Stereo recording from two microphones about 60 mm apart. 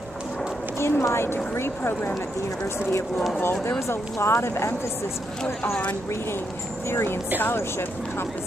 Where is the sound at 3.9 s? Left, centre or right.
Left.